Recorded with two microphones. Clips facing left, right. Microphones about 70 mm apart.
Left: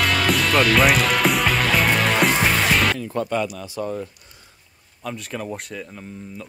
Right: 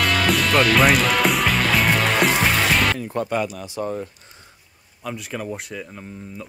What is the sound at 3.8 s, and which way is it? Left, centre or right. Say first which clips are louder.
Speech: right 1 dB; right.